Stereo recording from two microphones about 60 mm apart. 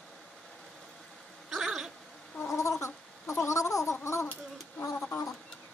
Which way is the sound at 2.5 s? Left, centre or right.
Left.